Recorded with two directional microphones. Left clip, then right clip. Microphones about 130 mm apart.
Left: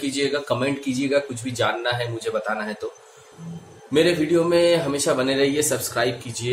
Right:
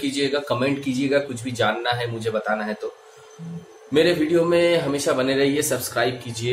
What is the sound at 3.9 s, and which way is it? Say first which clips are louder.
Speech: even; 5° left (ahead or behind).